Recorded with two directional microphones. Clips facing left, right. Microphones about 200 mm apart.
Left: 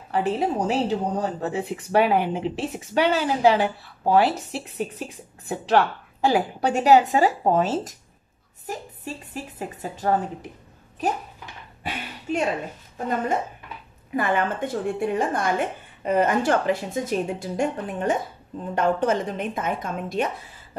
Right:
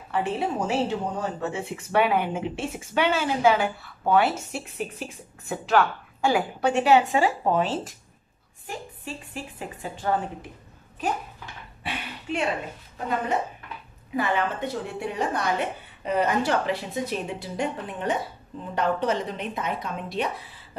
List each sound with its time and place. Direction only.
0.1 s speech: 35° left (ahead or behind)
11.8 s a sound: 45° left (ahead or behind)
14.1 s a woman's voice: 50° left (ahead or behind)